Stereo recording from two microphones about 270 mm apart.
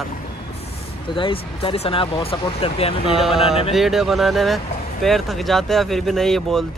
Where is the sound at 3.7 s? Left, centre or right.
Centre.